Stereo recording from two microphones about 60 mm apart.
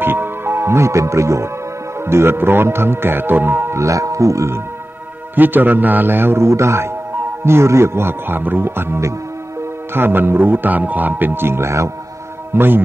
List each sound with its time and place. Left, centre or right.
0.0 s speech: right
2.0 s speech: right
3.7 s speech: right
5.3 s speech: right
12.5 s speech: right